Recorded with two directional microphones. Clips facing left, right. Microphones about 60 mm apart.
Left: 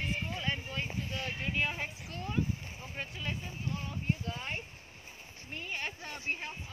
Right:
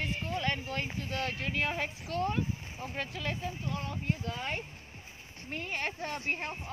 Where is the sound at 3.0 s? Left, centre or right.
Right.